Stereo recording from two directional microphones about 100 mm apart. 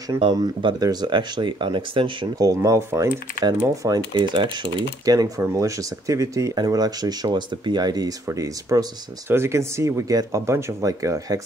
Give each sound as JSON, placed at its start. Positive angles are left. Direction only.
{"t": 0.3, "sound": "speech", "side_deg": -50}
{"t": 2.3, "sound": "speech", "side_deg": -35}
{"t": 4.1, "sound": "speech", "side_deg": -50}
{"t": 5.0, "sound": "speech", "side_deg": -40}
{"t": 8.3, "sound": "speech", "side_deg": -30}